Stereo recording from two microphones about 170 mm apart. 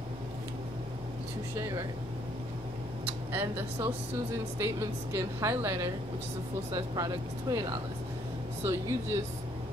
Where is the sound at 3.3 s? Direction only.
10° right (ahead or behind).